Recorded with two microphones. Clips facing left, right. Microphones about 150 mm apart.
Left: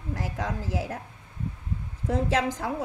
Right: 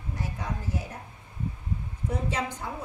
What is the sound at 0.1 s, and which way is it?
Speech, 90° left.